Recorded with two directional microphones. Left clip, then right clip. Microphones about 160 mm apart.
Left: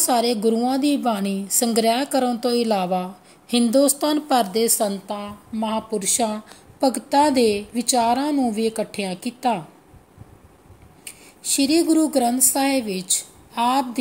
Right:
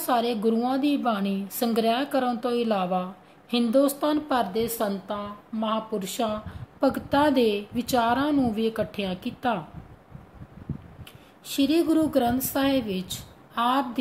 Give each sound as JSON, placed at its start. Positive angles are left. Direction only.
{"t": 0.0, "sound": "a woman's voice", "side_deg": 35}
{"t": 4.9, "sound": "a woman's voice", "side_deg": 30}
{"t": 11.1, "sound": "speech", "side_deg": 30}